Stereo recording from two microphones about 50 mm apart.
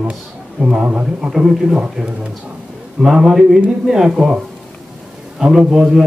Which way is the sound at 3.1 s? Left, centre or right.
Centre.